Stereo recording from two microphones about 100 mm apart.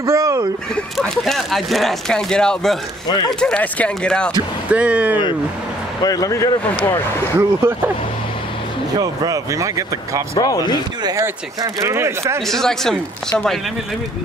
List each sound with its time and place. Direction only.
0.0 s speech: 35° right (ahead or behind)
1.0 s speech: 5° left (ahead or behind)
3.1 s speech: 45° left (ahead or behind)
3.3 s speech: 10° left (ahead or behind)
4.6 s speech: 10° right (ahead or behind)
6.0 s speech: 35° left (ahead or behind)
7.3 s speech: 25° right (ahead or behind)
8.9 s speech: 40° right (ahead or behind)
10.4 s speech: 40° left (ahead or behind)
11.0 s speech: 40° right (ahead or behind)
11.6 s speech: 30° right (ahead or behind)
12.4 s speech: 5° left (ahead or behind)